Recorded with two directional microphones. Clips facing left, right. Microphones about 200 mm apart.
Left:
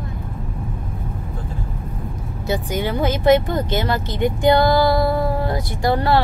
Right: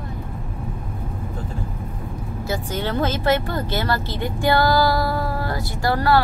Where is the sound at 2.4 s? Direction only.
15° left (ahead or behind).